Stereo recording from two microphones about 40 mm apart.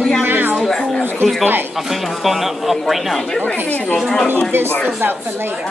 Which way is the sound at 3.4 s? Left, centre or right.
Left.